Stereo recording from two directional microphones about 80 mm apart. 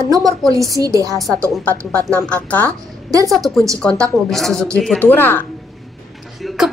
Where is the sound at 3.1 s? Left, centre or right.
Right.